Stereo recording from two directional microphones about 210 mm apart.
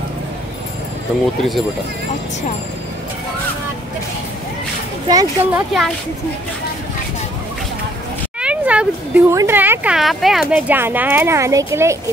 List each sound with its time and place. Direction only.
5.0 s speech: 15° right (ahead or behind)
5.5 s speech: centre (ahead or behind)
8.4 s speech: 5° right (ahead or behind)